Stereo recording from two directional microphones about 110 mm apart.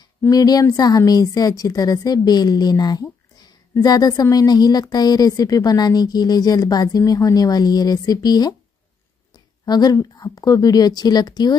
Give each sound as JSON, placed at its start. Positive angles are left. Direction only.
{"t": 0.3, "sound": "a woman's voice", "side_deg": 35}